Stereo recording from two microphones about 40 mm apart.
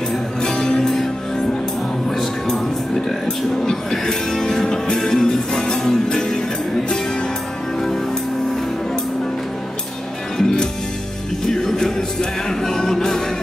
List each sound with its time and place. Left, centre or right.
0.4 s music: centre
2.0 s music: centre
3.9 s speech: centre
4.6 s music: centre
10.3 s music: centre